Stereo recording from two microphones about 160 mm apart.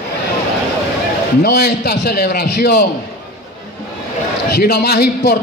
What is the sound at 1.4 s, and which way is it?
A man's voice, 90° left.